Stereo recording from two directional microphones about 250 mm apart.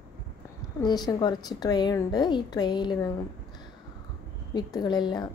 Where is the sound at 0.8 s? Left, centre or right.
Centre.